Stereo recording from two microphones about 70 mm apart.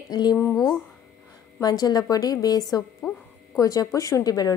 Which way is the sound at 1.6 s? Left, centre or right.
Left.